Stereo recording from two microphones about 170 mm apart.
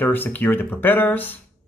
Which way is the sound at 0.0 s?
10° left (ahead or behind).